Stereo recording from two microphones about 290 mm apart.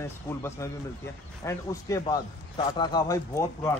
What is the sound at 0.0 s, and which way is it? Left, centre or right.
Speech, centre.